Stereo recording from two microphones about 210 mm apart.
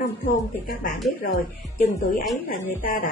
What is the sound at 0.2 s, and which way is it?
A woman's voice, 40° left (ahead or behind).